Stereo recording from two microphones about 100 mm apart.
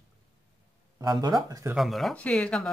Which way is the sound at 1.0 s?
45° right (ahead or behind).